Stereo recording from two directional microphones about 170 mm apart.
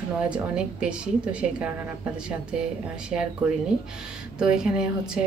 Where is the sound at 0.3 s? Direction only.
5° right (ahead or behind).